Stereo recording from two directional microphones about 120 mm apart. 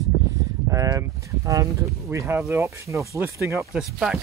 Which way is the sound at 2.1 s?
20° right (ahead or behind).